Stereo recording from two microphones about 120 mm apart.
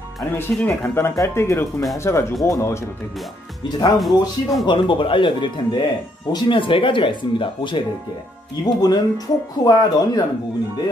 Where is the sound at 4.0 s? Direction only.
Centre (ahead or behind).